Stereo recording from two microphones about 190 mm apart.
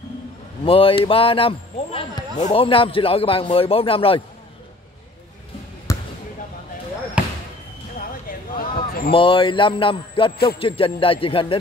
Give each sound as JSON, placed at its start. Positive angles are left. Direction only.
{"t": 0.7, "sound": "speech", "side_deg": 30}
{"t": 5.9, "sound": "basketball bounce", "side_deg": 15}
{"t": 7.2, "sound": "basketball bounce", "side_deg": -5}
{"t": 8.3, "sound": "a sound", "side_deg": 50}
{"t": 9.1, "sound": "speech", "side_deg": 25}